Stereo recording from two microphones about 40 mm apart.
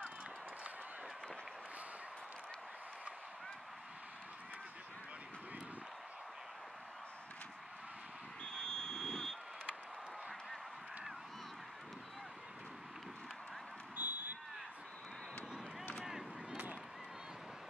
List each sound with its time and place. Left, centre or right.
8.5 s vehicle: centre
13.9 s vehicle: right